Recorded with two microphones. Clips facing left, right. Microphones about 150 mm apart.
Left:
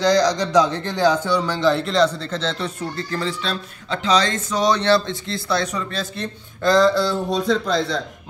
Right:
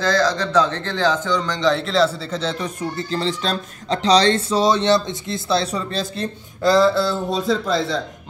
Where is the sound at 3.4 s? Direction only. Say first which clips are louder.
Right 3 dB; 40° right (ahead or behind).